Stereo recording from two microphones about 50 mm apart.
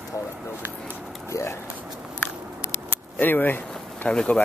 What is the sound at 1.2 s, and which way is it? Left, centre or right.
Speech, left.